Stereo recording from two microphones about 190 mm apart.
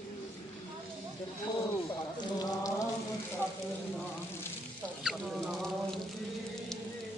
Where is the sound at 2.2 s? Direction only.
20° left (ahead or behind).